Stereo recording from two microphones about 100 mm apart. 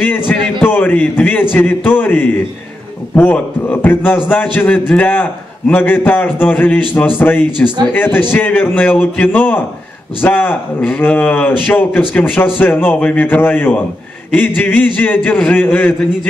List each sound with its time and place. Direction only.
0.3 s a man's voice: 20° left (ahead or behind)